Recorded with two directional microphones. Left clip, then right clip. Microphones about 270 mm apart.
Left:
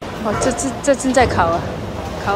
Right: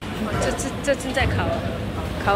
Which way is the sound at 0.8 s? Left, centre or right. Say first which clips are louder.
Left 8 dB; centre.